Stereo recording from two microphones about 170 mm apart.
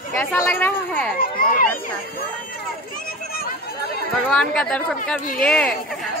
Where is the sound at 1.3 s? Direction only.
55° left (ahead or behind).